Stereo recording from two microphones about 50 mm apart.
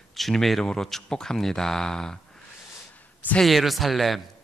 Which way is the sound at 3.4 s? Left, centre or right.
Centre.